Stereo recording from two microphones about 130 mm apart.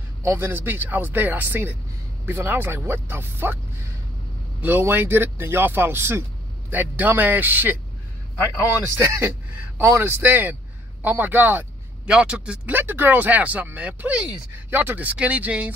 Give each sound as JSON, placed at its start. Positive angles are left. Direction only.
{"t": 0.2, "sound": "speech", "side_deg": -20}
{"t": 4.6, "sound": "speech", "side_deg": -15}
{"t": 8.9, "sound": "speech", "side_deg": -20}